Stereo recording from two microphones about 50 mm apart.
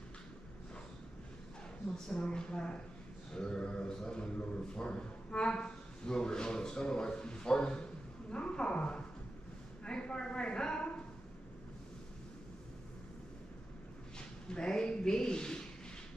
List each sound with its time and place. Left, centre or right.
2.0 s speech: centre
3.3 s mantra: centre
9.8 s speech: centre
14.5 s speech: centre